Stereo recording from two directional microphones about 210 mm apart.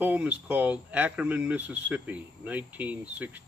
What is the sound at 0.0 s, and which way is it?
Speech, 10° right (ahead or behind).